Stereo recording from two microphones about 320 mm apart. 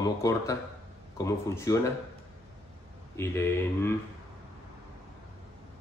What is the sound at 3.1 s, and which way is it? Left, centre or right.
Speech, centre.